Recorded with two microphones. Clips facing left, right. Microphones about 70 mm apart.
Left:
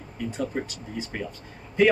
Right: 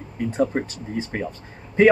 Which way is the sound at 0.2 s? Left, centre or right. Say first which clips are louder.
Right 7 dB; right.